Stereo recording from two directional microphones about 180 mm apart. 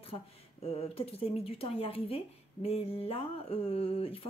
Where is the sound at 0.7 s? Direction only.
35° left (ahead or behind).